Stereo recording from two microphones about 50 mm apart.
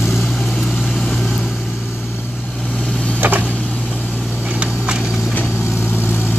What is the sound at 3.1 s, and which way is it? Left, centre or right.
Vehicle, right.